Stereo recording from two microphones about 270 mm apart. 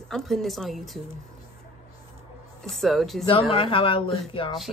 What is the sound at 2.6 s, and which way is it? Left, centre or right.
Speech, centre.